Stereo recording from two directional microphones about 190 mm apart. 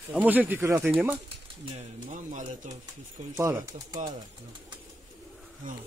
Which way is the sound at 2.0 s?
40° right (ahead or behind).